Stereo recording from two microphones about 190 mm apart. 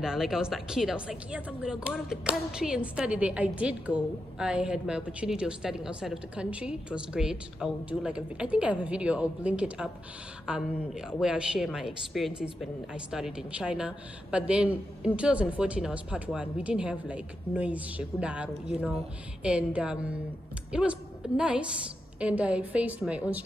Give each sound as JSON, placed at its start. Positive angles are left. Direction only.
{"t": 0.0, "sound": "a woman's voice", "side_deg": -5}